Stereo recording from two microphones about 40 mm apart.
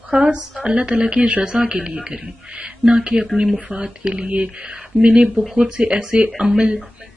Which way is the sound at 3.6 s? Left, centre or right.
Right.